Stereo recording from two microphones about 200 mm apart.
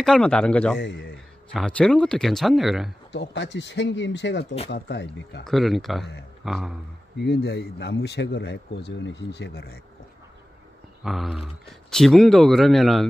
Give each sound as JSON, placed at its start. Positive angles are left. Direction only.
{"t": 0.0, "sound": "speech", "side_deg": 5}
{"t": 0.7, "sound": "speech", "side_deg": 60}
{"t": 1.5, "sound": "speech", "side_deg": 5}
{"t": 3.1, "sound": "speech", "side_deg": 60}
{"t": 5.4, "sound": "speech", "side_deg": 0}
{"t": 7.2, "sound": "speech", "side_deg": 55}
{"t": 11.1, "sound": "speech", "side_deg": 0}